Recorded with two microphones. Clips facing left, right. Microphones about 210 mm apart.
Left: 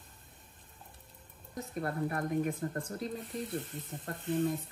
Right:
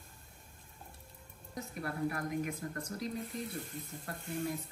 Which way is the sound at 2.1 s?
35° left (ahead or behind).